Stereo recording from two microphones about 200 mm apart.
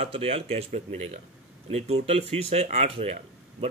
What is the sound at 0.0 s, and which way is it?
Speech, 30° right (ahead or behind).